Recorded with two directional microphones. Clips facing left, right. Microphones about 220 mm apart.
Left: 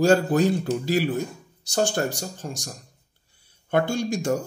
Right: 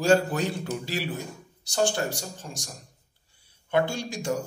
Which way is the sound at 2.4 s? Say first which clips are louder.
Left 6 dB; 50° left (ahead or behind).